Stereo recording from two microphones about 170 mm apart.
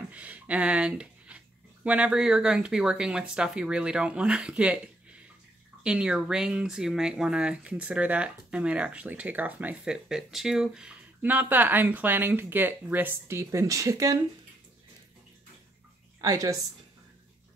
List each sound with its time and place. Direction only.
0.1 s a sound: 10° right (ahead or behind)
1.9 s speech: 5° right (ahead or behind)
16.2 s a woman's voice: 20° right (ahead or behind)